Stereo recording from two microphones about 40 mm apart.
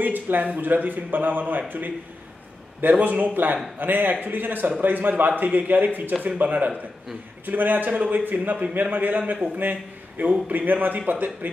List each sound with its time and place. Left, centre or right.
0.0 s speech: right
2.8 s speech: right
4.1 s a man's voice: right
4.4 s a man's voice: right
7.4 s speech: right